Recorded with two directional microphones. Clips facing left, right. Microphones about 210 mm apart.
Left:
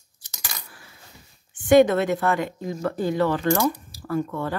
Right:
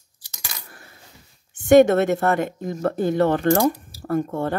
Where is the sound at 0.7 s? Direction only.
50° right (ahead or behind).